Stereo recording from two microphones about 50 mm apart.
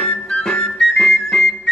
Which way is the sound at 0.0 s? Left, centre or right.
Centre.